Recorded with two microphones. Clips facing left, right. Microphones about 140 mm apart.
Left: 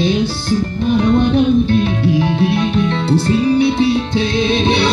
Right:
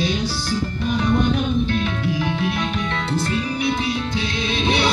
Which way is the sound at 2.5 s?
30° left (ahead or behind).